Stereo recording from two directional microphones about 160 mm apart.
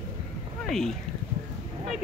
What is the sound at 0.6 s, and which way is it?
Speech, centre (ahead or behind).